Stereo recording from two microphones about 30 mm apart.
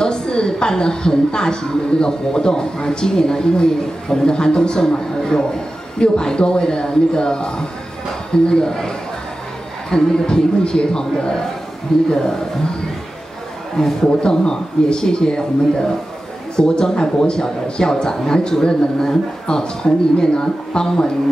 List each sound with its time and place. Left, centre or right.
0.0 s a woman's voice: left
13.8 s a woman's voice: centre
16.5 s a woman's voice: left